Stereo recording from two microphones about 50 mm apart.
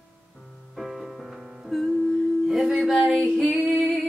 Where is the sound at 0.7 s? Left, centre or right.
Centre.